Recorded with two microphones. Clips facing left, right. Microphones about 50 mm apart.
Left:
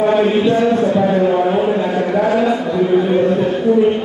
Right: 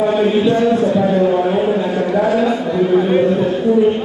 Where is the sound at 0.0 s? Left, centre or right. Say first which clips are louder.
Left 1 dB; left.